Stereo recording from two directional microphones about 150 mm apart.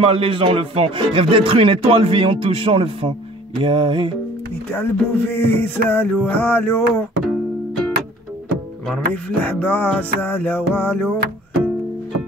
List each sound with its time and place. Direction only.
0.0 s speech: 35° right (ahead or behind)
4.7 s music: 15° left (ahead or behind)
8.8 s music: 10° left (ahead or behind)